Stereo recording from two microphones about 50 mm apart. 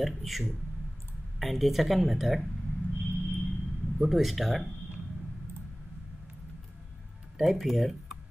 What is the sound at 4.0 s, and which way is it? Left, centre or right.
Speech, centre.